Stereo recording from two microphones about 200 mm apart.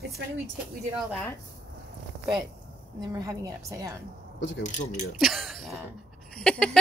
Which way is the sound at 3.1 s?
15° right (ahead or behind).